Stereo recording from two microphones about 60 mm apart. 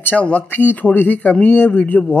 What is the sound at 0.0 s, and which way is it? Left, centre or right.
Speech, left.